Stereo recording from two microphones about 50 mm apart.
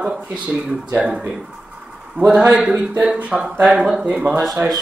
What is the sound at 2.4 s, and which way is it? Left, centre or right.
Speech, right.